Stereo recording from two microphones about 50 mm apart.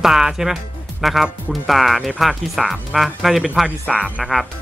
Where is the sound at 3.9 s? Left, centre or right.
Centre.